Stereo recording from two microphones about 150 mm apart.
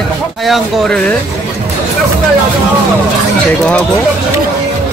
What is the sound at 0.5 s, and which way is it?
Speech, 5° left (ahead or behind).